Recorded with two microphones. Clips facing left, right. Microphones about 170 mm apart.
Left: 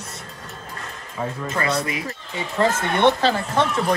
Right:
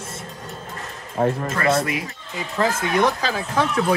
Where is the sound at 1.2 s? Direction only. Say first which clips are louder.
Right 8 dB; 55° right (ahead or behind).